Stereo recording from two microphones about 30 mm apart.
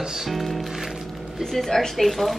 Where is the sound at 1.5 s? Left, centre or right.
Centre.